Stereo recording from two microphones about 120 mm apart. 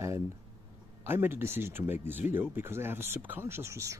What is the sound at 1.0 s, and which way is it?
Speech, 20° right (ahead or behind).